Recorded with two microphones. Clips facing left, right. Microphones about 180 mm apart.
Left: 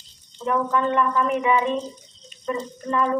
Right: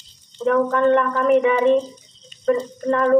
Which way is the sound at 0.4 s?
60° right (ahead or behind).